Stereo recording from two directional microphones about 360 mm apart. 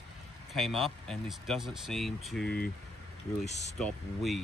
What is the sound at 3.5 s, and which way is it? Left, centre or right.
Speech, centre.